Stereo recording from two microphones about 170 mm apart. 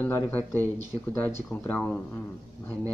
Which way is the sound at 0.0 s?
10° left (ahead or behind).